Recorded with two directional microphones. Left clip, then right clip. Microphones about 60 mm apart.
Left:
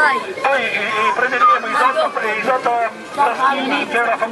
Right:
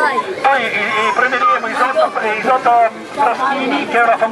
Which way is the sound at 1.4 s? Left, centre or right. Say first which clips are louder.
Even; left.